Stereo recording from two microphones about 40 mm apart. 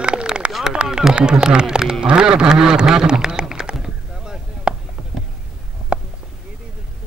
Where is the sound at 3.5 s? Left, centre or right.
Centre.